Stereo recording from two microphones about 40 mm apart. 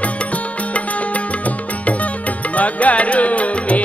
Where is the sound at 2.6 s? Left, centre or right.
Left.